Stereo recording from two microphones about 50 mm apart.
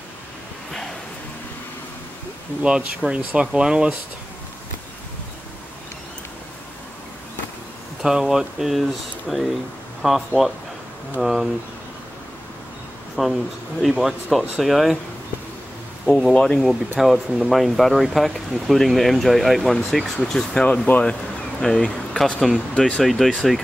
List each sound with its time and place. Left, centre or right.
2.6 s speech: right
8.0 s speech: centre
13.1 s speech: centre
16.1 s speech: centre
20.6 s speech: left
23.0 s speech: centre